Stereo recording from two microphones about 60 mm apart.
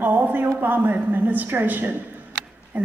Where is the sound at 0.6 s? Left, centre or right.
Right.